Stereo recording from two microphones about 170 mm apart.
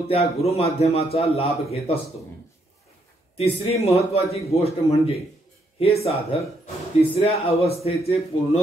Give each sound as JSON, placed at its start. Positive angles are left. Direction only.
{"t": 0.1, "sound": "speech", "side_deg": 35}
{"t": 3.3, "sound": "speech", "side_deg": 35}